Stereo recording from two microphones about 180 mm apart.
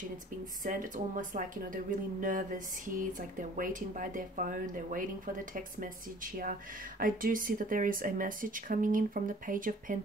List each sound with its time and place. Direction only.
0.7 s speech: 45° right (ahead or behind)